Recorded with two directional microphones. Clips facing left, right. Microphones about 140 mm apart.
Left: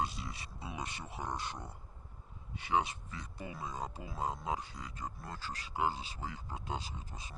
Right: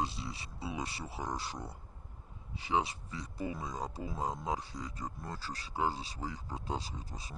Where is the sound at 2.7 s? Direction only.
35° right (ahead or behind).